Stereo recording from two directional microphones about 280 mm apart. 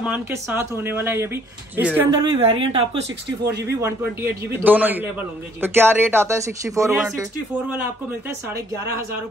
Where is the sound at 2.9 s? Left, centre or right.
Right.